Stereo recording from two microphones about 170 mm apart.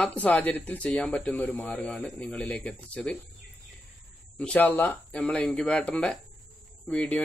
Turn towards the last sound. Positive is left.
turn(degrees=10)  # may be behind; listen again after turning